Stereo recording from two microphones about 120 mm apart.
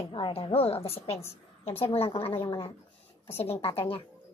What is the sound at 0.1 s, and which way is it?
A woman's voice, 50° left (ahead or behind).